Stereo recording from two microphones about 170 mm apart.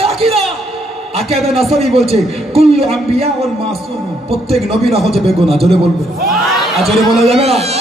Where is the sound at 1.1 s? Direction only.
35° right (ahead or behind).